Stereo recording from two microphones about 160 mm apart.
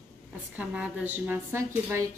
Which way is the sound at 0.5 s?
10° right (ahead or behind).